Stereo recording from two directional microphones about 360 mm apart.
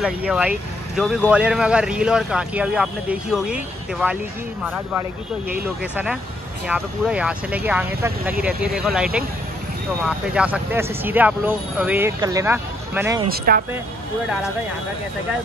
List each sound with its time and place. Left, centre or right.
0.0 s speech: centre
6.7 s speech: centre
13.5 s speech: right